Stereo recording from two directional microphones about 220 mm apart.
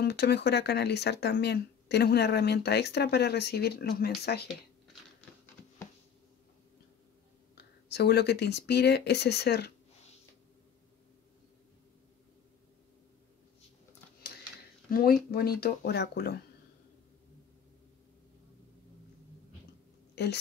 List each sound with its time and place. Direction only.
0.0 s speech: 50° left (ahead or behind)
7.5 s speech: 50° left (ahead or behind)
14.9 s speech: 40° left (ahead or behind)
20.2 s a woman's voice: 50° left (ahead or behind)